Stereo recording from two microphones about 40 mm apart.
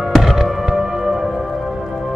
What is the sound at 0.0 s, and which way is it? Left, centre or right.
Music, centre.